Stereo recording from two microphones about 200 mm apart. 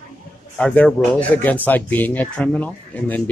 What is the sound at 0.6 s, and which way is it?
Speech, 5° left (ahead or behind).